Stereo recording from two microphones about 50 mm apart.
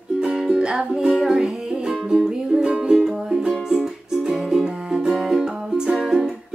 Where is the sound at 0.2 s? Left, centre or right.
Centre.